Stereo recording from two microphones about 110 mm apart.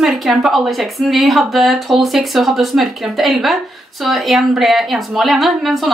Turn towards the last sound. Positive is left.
turn(degrees=0)  # may be behind; listen again after turning